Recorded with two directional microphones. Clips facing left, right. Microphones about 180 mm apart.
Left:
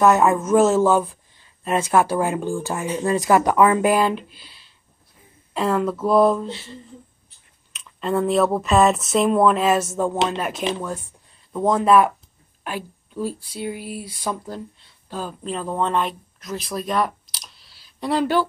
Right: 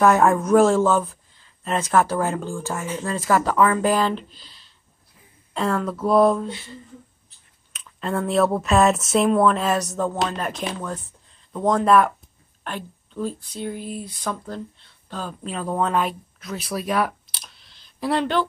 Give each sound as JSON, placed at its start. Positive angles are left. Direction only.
{"t": 0.0, "sound": "speech", "side_deg": 5}
{"t": 7.7, "sound": "speech", "side_deg": 0}
{"t": 15.4, "sound": "speech", "side_deg": -5}